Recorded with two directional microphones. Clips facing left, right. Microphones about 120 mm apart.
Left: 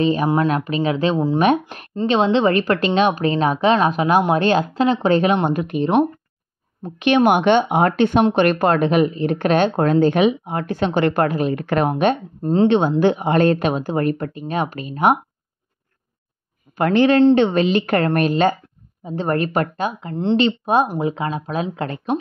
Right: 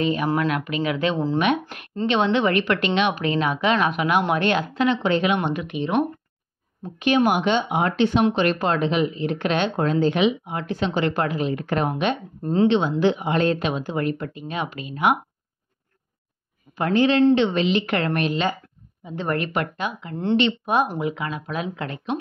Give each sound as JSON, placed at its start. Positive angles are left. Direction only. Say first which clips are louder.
{"t": 0.0, "sound": "a woman's voice", "louder": "left 4 dB", "side_deg": 35}
{"t": 7.0, "sound": "speech", "louder": "left 4 dB", "side_deg": 70}
{"t": 11.9, "sound": "speech", "louder": "left 6 dB", "side_deg": 45}
{"t": 12.4, "sound": "speech", "louder": "even", "side_deg": 30}
{"t": 12.6, "sound": "speech", "louder": "left 3 dB", "side_deg": 45}
{"t": 16.7, "sound": "a woman's voice", "louder": "left 4 dB", "side_deg": 60}